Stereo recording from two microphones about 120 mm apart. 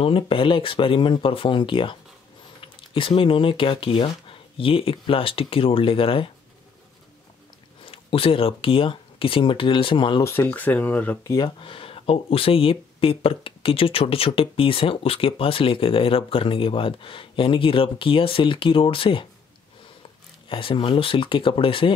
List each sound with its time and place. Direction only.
0.0 s speech: 45° left (ahead or behind)
7.8 s speech: 50° left (ahead or behind)
10.2 s speech: 20° left (ahead or behind)
11.3 s speech: 40° left (ahead or behind)
20.4 s speech: 45° left (ahead or behind)